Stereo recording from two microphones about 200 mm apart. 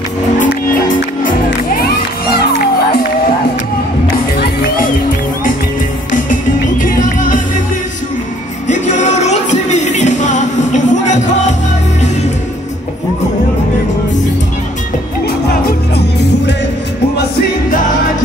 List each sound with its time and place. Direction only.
0.5 s music: 40° left (ahead or behind)
7.0 s music: 40° left (ahead or behind)
9.0 s music: 35° left (ahead or behind)